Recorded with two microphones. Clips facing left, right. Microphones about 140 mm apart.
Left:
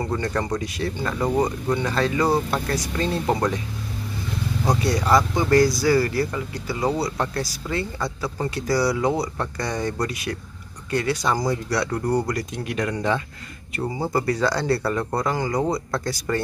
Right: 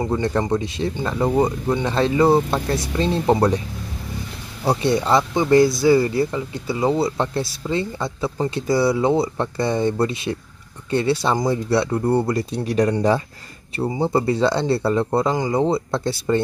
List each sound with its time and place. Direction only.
0.0 s speech: 20° right (ahead or behind)
4.6 s speech: 25° right (ahead or behind)
13.7 s speech: 25° right (ahead or behind)